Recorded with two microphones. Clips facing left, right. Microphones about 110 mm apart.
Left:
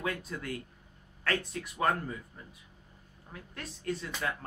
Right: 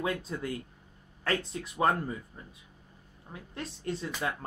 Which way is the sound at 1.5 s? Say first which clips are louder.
Right 4 dB; 25° right (ahead or behind).